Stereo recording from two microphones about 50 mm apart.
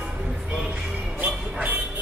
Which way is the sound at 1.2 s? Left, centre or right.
Right.